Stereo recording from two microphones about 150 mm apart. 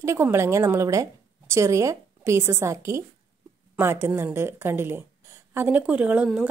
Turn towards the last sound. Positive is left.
turn(degrees=-10)  # may be behind; listen again after turning